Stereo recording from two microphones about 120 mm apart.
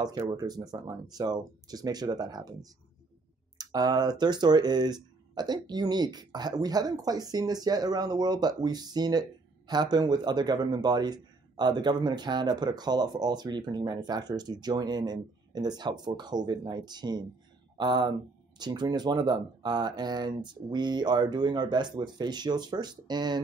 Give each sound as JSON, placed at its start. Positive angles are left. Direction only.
{"t": 0.3, "sound": "speech", "side_deg": -35}